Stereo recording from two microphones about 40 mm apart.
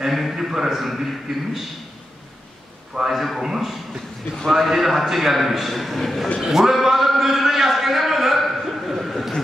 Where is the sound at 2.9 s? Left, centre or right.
Centre.